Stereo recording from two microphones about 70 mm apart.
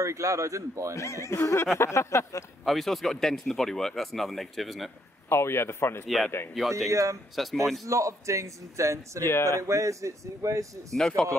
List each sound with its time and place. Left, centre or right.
0.0 s a man's voice: right
0.9 s speech: left
2.6 s speech: centre
5.3 s speech: left
6.0 s speech: centre
6.9 s a man's voice: right
7.4 s speech: centre
7.8 s a man's voice: right
9.2 s speech: left
9.6 s a man's voice: right
10.9 s speech: centre